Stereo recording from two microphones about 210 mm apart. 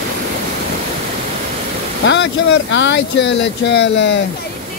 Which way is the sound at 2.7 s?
60° left (ahead or behind).